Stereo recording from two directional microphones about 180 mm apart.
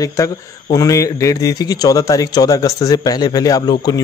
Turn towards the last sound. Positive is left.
turn(degrees=25)  # may be behind; listen again after turning